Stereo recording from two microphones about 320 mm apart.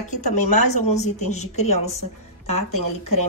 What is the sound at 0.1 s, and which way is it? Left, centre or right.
A woman's voice, left.